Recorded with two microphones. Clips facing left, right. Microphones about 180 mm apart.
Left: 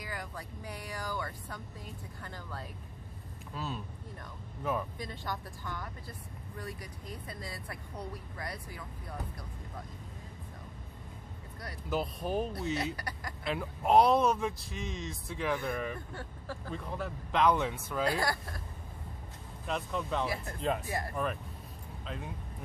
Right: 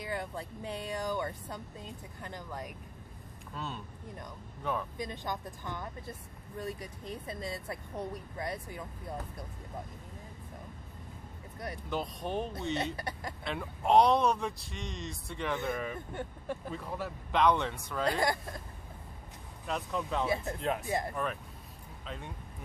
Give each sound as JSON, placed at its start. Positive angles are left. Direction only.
{"t": 0.0, "sound": "speech", "side_deg": -25}
{"t": 3.5, "sound": "speech", "side_deg": 5}
{"t": 4.9, "sound": "speech", "side_deg": -20}
{"t": 11.9, "sound": "speech", "side_deg": 5}
{"t": 12.9, "sound": "speech", "side_deg": -25}
{"t": 13.4, "sound": "speech", "side_deg": 0}
{"t": 16.1, "sound": "speech", "side_deg": -20}
{"t": 16.7, "sound": "speech", "side_deg": 0}
{"t": 18.2, "sound": "speech", "side_deg": -20}
{"t": 19.7, "sound": "speech", "side_deg": 0}
{"t": 20.2, "sound": "speech", "side_deg": -20}
{"t": 22.0, "sound": "speech", "side_deg": 0}